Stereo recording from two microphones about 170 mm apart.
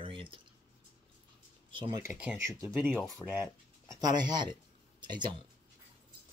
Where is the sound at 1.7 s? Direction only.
30° right (ahead or behind).